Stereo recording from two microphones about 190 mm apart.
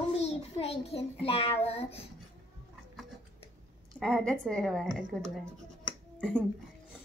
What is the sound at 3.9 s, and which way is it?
A woman's voice, 5° left (ahead or behind).